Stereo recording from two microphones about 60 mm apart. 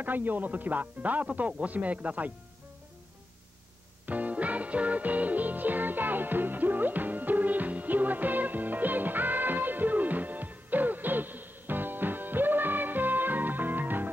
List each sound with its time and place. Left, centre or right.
0.0 s speech: right
4.0 s music: right